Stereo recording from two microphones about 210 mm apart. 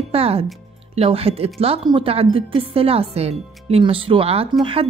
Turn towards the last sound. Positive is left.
turn(degrees=-25)  # may be behind; listen again after turning